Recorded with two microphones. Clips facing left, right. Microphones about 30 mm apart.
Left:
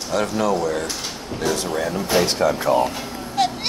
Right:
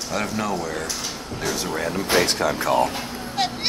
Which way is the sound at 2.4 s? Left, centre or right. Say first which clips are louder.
Left 4 dB; right.